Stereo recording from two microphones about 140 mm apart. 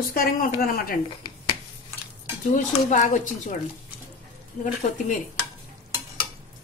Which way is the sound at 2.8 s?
60° left (ahead or behind).